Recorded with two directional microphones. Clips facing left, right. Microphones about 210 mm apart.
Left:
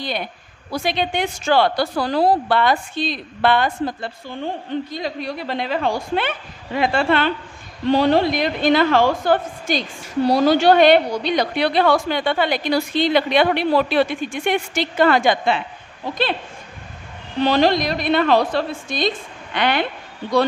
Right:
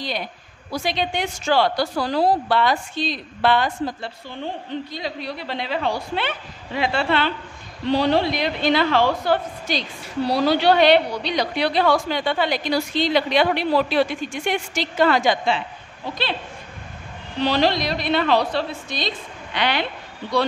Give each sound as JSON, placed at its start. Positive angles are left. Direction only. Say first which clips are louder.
{"t": 0.7, "sound": "a woman's voice", "louder": "left 2 dB", "side_deg": 55}
{"t": 17.4, "sound": "a woman's voice", "louder": "left 3 dB", "side_deg": 50}